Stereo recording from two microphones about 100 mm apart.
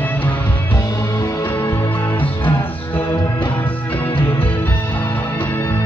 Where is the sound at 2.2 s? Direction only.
20° left (ahead or behind).